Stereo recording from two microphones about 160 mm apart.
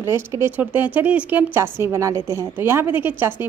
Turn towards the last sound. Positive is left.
turn(degrees=-15)  # may be behind; listen again after turning